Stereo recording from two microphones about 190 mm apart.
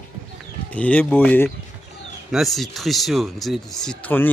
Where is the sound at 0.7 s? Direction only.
5° left (ahead or behind).